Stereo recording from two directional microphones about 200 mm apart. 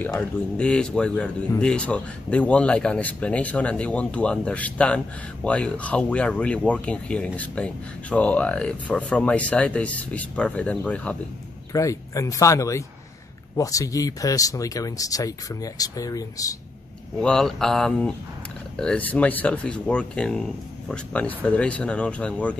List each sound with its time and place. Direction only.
0.0 s speech: 5° left (ahead or behind)
17.2 s speech: 5° left (ahead or behind)